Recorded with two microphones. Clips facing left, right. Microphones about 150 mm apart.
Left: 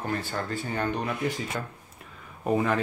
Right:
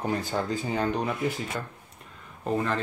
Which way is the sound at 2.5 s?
10° left (ahead or behind).